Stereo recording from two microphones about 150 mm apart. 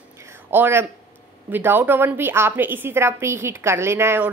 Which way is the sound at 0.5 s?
15° right (ahead or behind).